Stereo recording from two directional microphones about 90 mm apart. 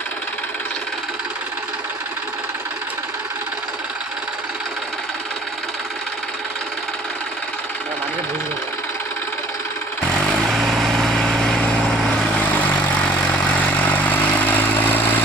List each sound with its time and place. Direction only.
10.2 s vehicle: 5° left (ahead or behind)
12.4 s vehicle: 15° left (ahead or behind)